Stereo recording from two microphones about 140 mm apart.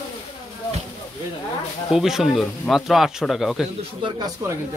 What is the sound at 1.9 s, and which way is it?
Speech, 5° right (ahead or behind).